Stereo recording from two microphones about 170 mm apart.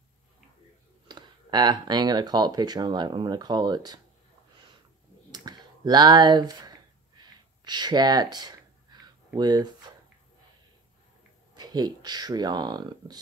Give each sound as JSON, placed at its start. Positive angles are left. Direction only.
{"t": 1.0, "sound": "speech", "side_deg": -25}
{"t": 5.3, "sound": "a sound", "side_deg": -25}
{"t": 11.5, "sound": "speech", "side_deg": -25}